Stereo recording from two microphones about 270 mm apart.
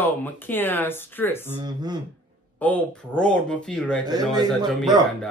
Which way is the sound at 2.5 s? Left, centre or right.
Centre.